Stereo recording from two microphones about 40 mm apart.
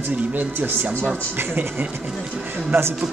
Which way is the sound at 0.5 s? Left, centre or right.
Right.